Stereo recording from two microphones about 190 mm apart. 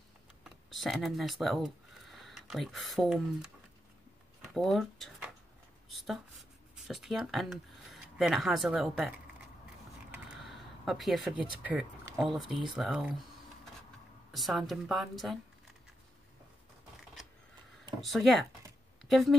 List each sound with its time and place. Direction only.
0.4 s speech: centre (ahead or behind)
4.6 s speech: centre (ahead or behind)
14.3 s a woman's voice: centre (ahead or behind)
18.0 s a woman's voice: centre (ahead or behind)